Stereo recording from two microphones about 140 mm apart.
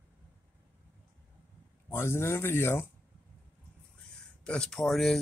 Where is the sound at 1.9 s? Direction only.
20° left (ahead or behind).